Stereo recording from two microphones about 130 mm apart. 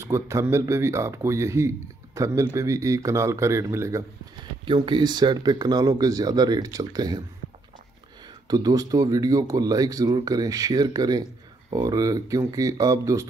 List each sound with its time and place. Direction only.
0.0 s speech: 20° right (ahead or behind)
4.6 s speech: 40° right (ahead or behind)
8.5 s speech: 30° right (ahead or behind)